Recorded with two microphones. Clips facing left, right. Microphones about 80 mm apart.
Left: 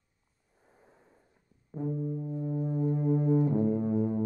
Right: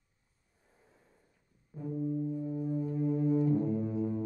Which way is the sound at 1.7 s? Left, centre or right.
Left.